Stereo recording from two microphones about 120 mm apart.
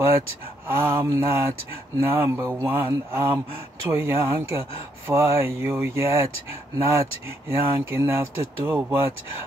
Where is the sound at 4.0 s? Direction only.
20° right (ahead or behind).